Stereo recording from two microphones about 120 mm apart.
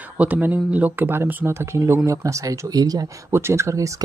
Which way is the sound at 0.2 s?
15° right (ahead or behind).